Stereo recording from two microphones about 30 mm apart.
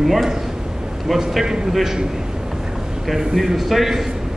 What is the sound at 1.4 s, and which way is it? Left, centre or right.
Speech, right.